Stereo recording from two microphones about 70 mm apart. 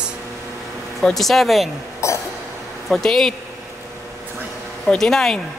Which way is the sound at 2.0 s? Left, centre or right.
Left.